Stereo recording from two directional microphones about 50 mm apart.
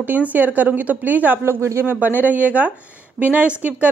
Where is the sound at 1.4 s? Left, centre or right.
Right.